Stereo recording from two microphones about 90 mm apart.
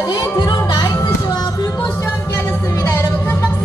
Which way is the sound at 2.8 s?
30° left (ahead or behind).